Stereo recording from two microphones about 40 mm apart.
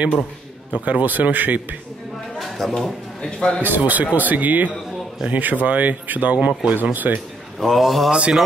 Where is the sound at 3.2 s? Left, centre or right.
Left.